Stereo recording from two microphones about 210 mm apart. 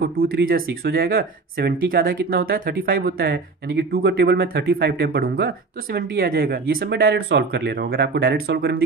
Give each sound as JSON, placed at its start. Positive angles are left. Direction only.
{"t": 0.0, "sound": "speech", "side_deg": -45}